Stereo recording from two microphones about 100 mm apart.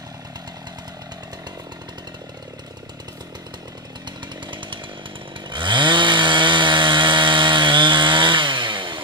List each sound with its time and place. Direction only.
4.5 s chainsaw: 55° right (ahead or behind)